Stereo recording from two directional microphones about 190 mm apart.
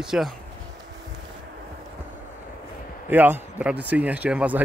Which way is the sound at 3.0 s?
10° right (ahead or behind).